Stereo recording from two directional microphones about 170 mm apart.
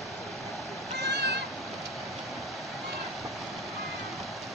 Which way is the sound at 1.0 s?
80° right.